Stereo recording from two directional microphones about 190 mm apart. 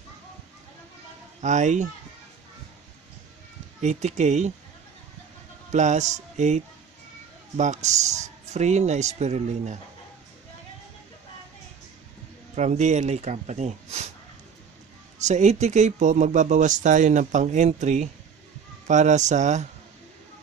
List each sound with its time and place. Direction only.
1.4 s speech: 40° right (ahead or behind)
3.8 s speech: 35° right (ahead or behind)
5.7 s speech: 40° right (ahead or behind)
12.5 s speech: 40° right (ahead or behind)
15.2 s speech: 35° right (ahead or behind)